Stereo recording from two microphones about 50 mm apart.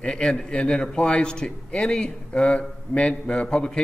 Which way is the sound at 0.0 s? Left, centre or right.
Centre.